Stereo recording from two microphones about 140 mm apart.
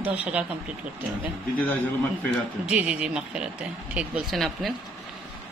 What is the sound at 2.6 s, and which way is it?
A woman's voice, 5° right (ahead or behind).